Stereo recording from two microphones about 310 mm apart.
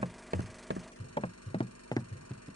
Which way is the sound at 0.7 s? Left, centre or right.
Right.